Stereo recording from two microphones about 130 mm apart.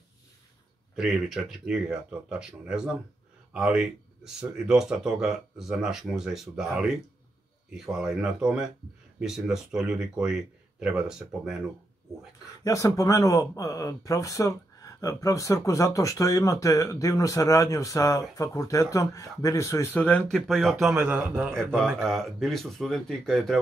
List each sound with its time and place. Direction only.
0.9 s speech: 5° right (ahead or behind)
12.6 s speech: 25° left (ahead or behind); by 20.7 s centre (ahead or behind)
20.8 s a man's voice: 10° right (ahead or behind)
21.7 s speech: centre (ahead or behind)